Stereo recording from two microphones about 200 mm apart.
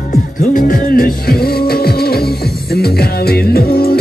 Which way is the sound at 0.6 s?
45° left (ahead or behind).